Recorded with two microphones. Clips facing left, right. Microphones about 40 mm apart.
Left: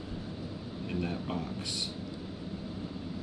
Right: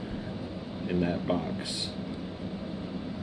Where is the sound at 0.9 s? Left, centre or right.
Centre.